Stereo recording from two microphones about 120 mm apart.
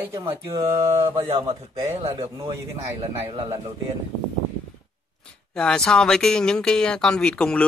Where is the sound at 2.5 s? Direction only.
35° right (ahead or behind).